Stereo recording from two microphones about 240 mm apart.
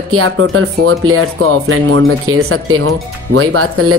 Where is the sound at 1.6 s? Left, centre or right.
Right.